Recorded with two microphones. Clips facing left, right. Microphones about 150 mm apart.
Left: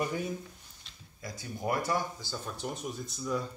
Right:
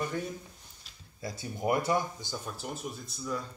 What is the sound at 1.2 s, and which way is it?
Speech, 25° right (ahead or behind).